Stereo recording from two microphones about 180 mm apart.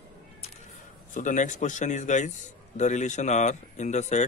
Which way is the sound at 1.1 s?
45° left (ahead or behind).